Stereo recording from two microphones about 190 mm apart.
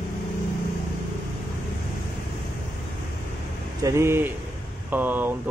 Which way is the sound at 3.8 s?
15° right (ahead or behind).